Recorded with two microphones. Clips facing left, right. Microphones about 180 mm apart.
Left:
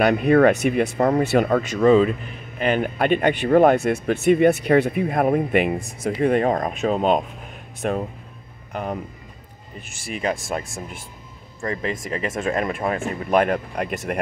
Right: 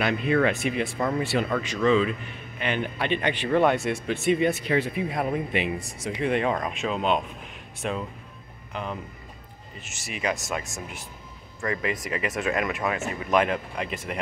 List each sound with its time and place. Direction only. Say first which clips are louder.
0.0 s speech: left 8 dB; 50° left (ahead or behind)
10.1 s speech: left 4 dB; 30° left (ahead or behind); by 14.2 s 50° left (ahead or behind)